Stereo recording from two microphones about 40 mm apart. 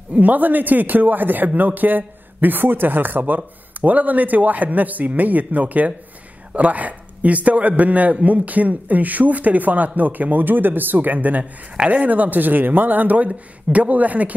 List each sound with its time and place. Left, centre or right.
0.1 s a man's voice: right
11.7 s speech: right
12.1 s a man's voice: right